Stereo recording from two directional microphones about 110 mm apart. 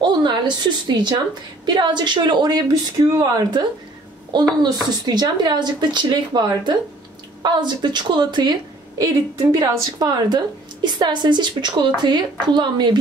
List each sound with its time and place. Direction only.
0.0 s a sound: 45° right (ahead or behind)
0.8 s a woman's voice: 40° right (ahead or behind)
8.9 s a woman's voice: 30° right (ahead or behind)